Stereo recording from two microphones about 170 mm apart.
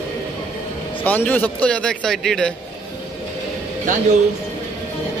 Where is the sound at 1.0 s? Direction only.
10° left (ahead or behind).